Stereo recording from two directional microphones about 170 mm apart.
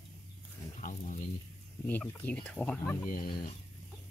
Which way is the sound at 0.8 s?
50° left (ahead or behind).